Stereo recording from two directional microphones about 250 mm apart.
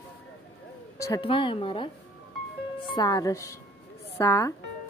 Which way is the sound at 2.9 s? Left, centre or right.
Centre.